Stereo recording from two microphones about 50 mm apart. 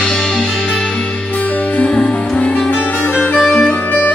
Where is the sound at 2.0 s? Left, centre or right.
Left.